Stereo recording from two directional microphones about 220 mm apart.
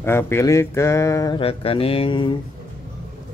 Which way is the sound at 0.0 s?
10° left (ahead or behind).